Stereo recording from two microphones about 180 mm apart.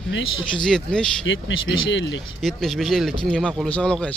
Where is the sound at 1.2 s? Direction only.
90° left.